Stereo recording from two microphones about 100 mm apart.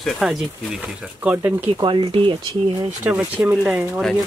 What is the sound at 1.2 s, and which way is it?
Speech, 15° right (ahead or behind).